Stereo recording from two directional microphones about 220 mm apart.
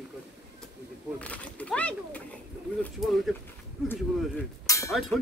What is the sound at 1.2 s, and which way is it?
Speech, 5° left (ahead or behind).